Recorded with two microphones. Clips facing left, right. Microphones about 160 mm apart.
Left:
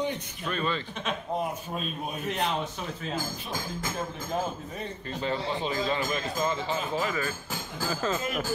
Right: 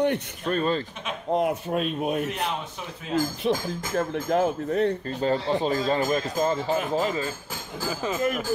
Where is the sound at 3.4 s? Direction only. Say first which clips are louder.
Right 8 dB; 65° right (ahead or behind).